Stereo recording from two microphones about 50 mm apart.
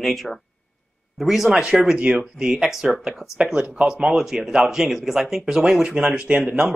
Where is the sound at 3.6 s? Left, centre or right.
Centre.